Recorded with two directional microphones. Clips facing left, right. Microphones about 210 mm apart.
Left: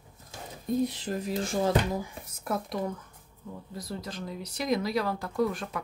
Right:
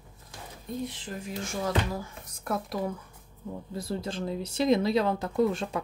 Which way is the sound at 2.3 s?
Centre (ahead or behind).